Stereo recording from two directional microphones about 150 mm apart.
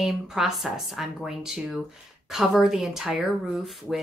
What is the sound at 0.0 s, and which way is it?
Speech, centre (ahead or behind).